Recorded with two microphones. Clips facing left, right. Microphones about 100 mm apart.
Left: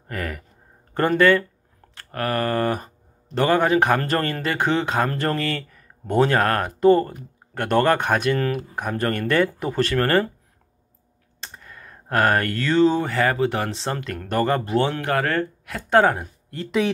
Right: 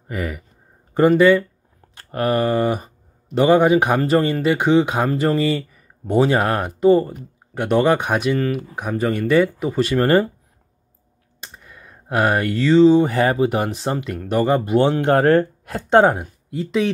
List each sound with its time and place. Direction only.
0.1 s speech: 10° right (ahead or behind)
2.0 s speech: 20° right (ahead or behind)
11.4 s a sound: 5° right (ahead or behind)
13.0 s speech: 15° right (ahead or behind)
16.4 s speech: centre (ahead or behind)